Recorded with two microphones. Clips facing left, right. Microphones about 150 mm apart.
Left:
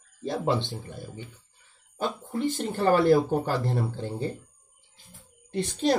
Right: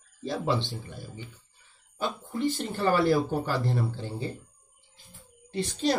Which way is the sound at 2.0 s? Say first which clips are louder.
Left 1 dB; 45° left (ahead or behind).